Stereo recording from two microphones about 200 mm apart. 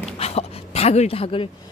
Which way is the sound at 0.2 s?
30° left (ahead or behind).